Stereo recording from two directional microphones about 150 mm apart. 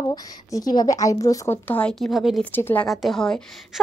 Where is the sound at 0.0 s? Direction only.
25° left (ahead or behind).